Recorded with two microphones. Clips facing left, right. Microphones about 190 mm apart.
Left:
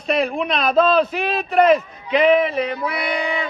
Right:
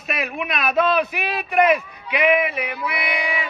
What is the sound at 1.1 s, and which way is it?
Speech, 10° right (ahead or behind).